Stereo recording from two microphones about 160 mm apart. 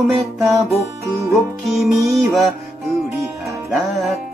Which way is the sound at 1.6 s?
Centre (ahead or behind).